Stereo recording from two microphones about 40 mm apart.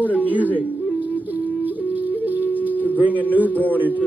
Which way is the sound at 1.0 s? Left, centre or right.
Right.